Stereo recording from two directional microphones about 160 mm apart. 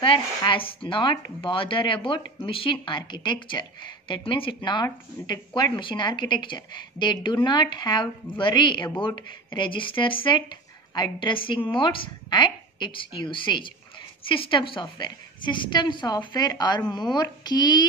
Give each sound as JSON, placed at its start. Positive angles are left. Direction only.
{"t": 0.0, "sound": "a woman's voice", "side_deg": 30}